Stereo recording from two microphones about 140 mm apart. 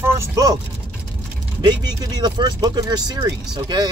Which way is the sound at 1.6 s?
30° right (ahead or behind).